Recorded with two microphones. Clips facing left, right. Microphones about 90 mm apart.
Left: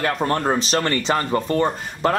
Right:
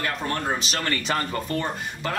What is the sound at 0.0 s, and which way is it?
Speech, 40° left (ahead or behind).